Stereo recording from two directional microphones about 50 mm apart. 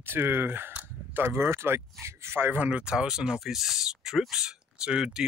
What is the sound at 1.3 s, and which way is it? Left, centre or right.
Speech, right.